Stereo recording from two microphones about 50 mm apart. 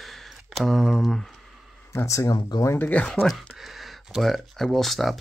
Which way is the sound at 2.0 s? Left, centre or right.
Left.